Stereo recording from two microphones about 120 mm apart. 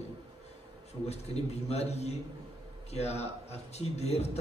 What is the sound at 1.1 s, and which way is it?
A man's voice, 60° left (ahead or behind).